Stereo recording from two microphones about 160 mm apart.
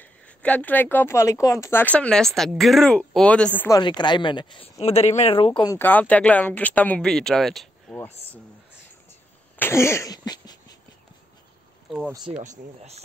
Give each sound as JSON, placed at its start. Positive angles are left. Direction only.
{"t": 0.0, "sound": "a woman's voice", "side_deg": 10}
{"t": 3.6, "sound": "speech", "side_deg": 25}
{"t": 5.6, "sound": "a woman's voice", "side_deg": 15}
{"t": 9.6, "sound": "a sound", "side_deg": 15}
{"t": 11.9, "sound": "speech", "side_deg": 0}
{"t": 12.4, "sound": "speech", "side_deg": -45}